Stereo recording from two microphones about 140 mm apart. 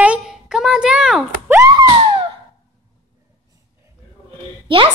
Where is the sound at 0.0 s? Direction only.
5° right (ahead or behind).